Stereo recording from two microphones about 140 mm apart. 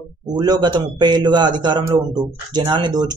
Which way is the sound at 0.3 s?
30° right (ahead or behind).